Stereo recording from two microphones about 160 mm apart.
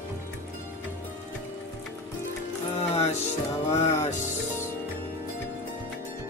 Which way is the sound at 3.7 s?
45° left (ahead or behind).